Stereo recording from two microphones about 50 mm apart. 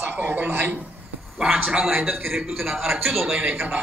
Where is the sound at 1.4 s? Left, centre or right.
Right.